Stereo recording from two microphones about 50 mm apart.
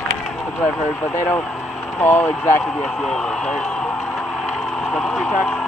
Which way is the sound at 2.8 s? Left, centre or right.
Centre.